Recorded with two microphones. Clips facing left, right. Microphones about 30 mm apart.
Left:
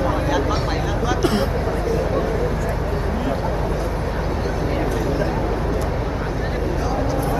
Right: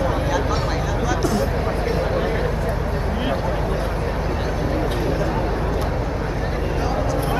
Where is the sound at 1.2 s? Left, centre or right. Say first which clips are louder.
Left 3 dB; left.